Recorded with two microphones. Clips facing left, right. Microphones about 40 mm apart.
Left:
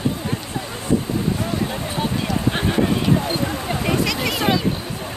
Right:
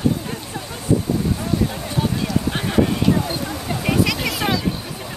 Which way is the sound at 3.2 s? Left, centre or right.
Left.